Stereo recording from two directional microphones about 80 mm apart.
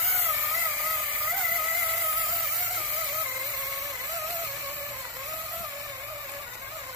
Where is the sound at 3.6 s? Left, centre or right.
Right.